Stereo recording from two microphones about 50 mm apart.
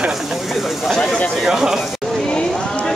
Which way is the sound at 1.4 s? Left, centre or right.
Centre.